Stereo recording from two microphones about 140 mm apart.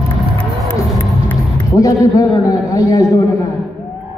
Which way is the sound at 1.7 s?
25° left (ahead or behind).